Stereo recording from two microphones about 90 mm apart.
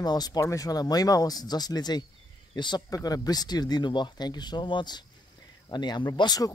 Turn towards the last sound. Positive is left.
turn(degrees=45)  # may be behind; listen again after turning